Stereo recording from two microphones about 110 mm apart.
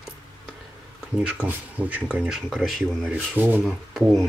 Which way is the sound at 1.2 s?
10° right (ahead or behind).